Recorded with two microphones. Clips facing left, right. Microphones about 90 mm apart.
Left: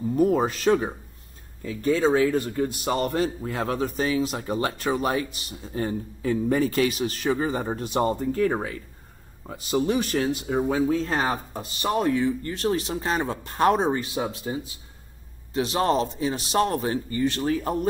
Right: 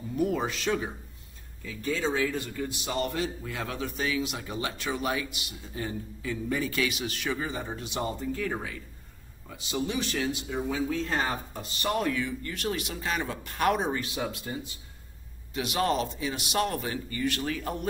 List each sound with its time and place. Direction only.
0.1 s a man's voice: 40° left (ahead or behind)